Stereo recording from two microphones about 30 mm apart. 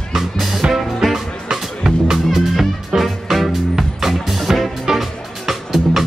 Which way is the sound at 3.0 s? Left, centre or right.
Centre.